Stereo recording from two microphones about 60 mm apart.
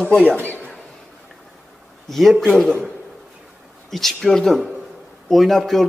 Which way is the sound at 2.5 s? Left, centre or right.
Centre.